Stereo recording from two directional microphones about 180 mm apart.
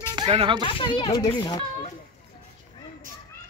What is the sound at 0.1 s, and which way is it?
Speech, 30° right (ahead or behind).